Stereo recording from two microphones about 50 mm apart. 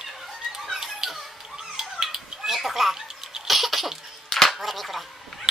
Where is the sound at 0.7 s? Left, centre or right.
Centre.